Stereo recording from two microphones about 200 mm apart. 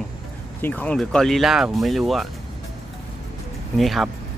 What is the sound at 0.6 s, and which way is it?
Speech, 10° left (ahead or behind).